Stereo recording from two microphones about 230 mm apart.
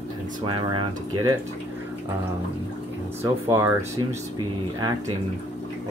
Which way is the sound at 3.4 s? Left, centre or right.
Centre.